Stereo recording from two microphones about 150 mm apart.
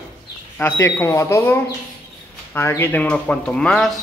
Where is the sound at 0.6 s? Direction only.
15° left (ahead or behind).